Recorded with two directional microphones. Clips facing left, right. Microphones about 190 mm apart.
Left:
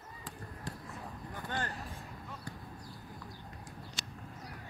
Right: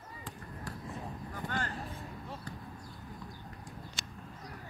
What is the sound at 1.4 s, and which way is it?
Vehicle, 20° right (ahead or behind).